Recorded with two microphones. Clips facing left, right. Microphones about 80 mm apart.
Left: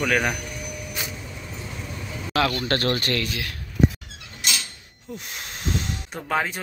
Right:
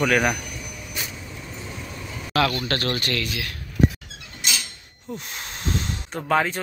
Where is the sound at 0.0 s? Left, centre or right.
Centre.